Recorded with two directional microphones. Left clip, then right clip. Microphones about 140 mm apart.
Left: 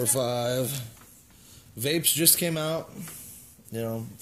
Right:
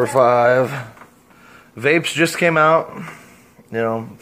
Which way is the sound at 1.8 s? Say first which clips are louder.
Right 11 dB; 45° left (ahead or behind).